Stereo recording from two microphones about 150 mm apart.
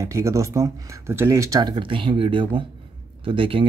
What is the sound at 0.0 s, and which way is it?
Speech, 20° right (ahead or behind).